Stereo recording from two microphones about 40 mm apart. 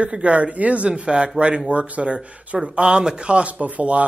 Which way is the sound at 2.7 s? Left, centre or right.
Right.